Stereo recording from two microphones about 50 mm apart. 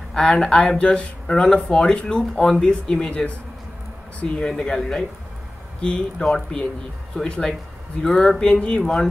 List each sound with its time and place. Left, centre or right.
0.1 s speech: centre
8.0 s speech: centre